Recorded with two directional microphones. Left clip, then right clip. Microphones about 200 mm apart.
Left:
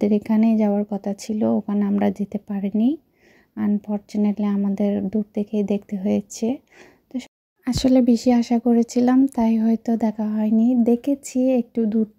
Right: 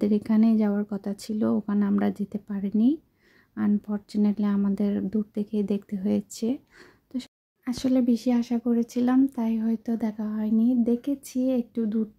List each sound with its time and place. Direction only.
0.0 s speech: 10° left (ahead or behind)
7.6 s speech: 20° left (ahead or behind)